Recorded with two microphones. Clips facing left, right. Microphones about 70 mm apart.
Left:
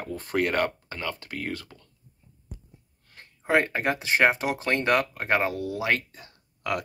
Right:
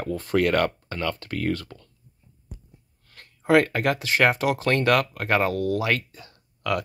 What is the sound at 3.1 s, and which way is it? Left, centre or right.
Speech, left.